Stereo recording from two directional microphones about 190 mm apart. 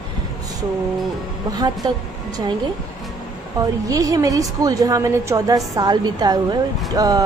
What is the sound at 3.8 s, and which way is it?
A woman's voice, 20° right (ahead or behind).